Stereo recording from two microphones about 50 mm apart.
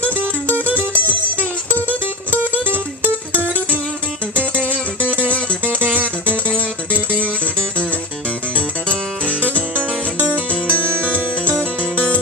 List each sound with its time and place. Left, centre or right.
0.2 s music: right
2.5 s music: right
5.9 s music: right
6.9 s music: left
9.4 s music: right